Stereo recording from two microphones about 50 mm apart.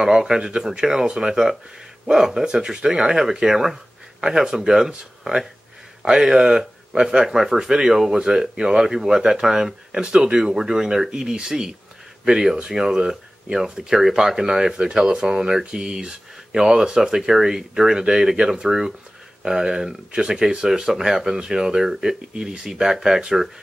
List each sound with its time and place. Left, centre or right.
0.0 s speech: centre